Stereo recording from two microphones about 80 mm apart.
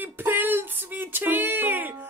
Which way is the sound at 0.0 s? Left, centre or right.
Right.